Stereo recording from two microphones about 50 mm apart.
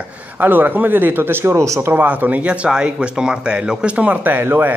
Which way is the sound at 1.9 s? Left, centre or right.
Right.